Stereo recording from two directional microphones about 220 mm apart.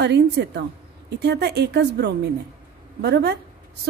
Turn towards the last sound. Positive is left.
turn(degrees=-50)  # may be behind; listen again after turning